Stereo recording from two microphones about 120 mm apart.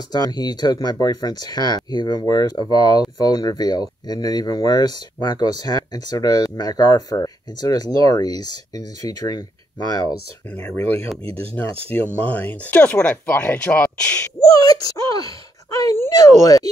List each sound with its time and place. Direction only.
0.1 s speech: 35° left (ahead or behind)
11.9 s speech: 20° left (ahead or behind)
14.4 s speech: 30° left (ahead or behind)